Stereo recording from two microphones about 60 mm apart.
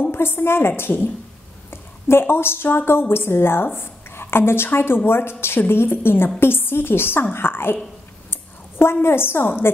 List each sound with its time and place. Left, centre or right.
0.0 s a woman's voice: left
8.3 s a sound: left
9.0 s a woman's voice: left